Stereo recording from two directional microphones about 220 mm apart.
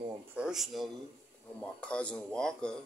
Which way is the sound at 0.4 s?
Centre (ahead or behind).